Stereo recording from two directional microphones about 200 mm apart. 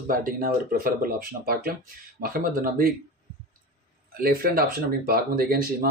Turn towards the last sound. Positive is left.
turn(degrees=-45)  # may be behind; listen again after turning